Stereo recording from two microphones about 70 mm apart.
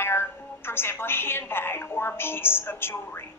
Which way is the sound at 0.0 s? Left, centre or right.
Left.